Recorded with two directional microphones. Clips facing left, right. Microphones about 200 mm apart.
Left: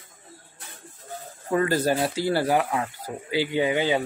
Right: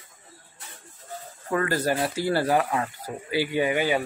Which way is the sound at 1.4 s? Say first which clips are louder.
Left 2 dB; 20° left (ahead or behind).